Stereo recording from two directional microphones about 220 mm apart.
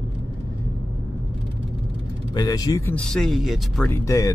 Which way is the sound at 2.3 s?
15° left (ahead or behind).